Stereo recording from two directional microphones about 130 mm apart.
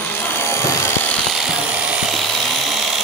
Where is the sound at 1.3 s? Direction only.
Centre (ahead or behind).